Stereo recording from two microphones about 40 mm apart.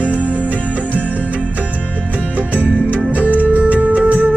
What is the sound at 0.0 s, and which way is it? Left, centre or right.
Music, right.